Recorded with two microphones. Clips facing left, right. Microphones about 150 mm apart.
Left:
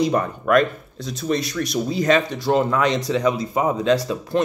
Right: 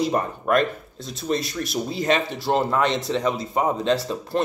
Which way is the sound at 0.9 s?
Centre (ahead or behind).